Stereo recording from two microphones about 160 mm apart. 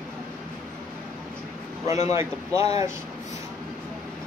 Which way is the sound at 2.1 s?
20° right (ahead or behind).